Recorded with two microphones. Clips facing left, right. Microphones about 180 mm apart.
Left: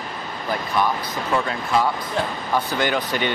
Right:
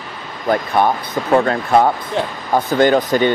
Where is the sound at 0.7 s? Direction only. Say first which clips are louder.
Right 6 dB; 50° right (ahead or behind).